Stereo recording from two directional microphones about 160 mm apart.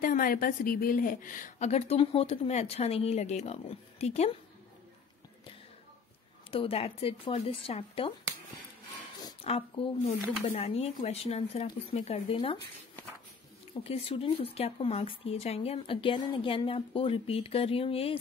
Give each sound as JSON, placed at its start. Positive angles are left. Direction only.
{"t": 0.0, "sound": "a woman's voice", "side_deg": 60}
{"t": 1.7, "sound": "speech", "side_deg": 40}
{"t": 6.5, "sound": "speech", "side_deg": 35}
{"t": 9.2, "sound": "a sound", "side_deg": 35}
{"t": 10.5, "sound": "speech", "side_deg": 40}
{"t": 13.8, "sound": "speech", "side_deg": 40}